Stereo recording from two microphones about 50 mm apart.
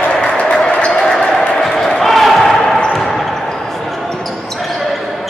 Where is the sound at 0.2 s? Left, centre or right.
Left.